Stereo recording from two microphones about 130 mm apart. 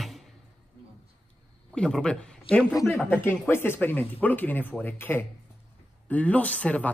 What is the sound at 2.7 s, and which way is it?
Speech, 20° left (ahead or behind).